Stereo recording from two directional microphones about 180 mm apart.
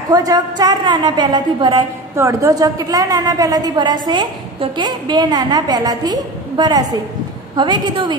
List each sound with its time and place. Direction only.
0.1 s a woman's voice: 20° right (ahead or behind)